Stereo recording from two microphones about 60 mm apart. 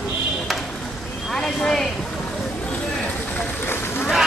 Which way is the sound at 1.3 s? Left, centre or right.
Centre.